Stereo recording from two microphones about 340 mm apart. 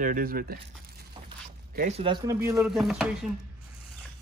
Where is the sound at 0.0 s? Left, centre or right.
Right.